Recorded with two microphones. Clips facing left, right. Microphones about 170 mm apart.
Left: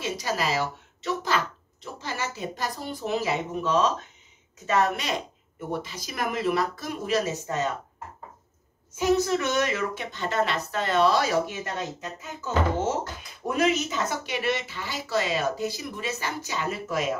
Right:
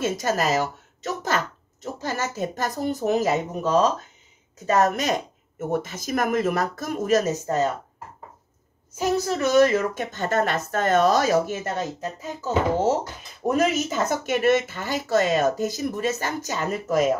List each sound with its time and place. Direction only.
0.0 s speech: 45° right (ahead or behind)
8.9 s speech: 40° right (ahead or behind)